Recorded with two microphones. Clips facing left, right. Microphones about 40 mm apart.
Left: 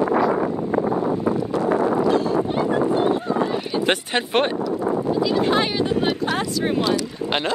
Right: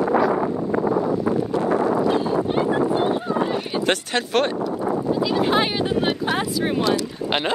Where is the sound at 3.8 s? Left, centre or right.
Centre.